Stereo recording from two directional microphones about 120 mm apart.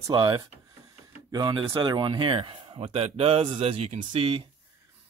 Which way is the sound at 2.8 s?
60° right (ahead or behind).